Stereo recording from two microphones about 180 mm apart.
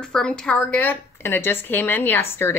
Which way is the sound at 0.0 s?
5° left (ahead or behind).